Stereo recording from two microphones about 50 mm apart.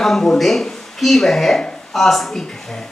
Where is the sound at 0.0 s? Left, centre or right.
Centre.